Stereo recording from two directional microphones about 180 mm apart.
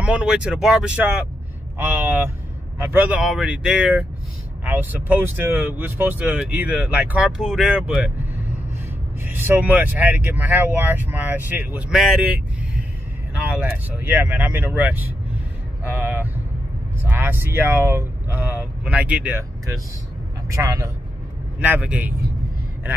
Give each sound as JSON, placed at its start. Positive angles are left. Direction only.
{"t": 0.0, "sound": "speech", "side_deg": -5}
{"t": 9.2, "sound": "speech", "side_deg": -10}
{"t": 13.3, "sound": "speech", "side_deg": -5}
{"t": 21.5, "sound": "speech", "side_deg": -5}